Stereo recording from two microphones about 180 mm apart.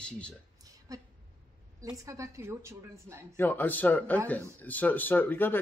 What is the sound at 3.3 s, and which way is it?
Speech, 10° left (ahead or behind).